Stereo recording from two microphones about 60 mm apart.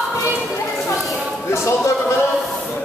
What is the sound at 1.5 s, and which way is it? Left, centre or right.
Speech, left.